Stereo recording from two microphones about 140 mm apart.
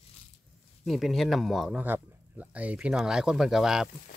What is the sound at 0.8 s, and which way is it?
Speech, centre (ahead or behind).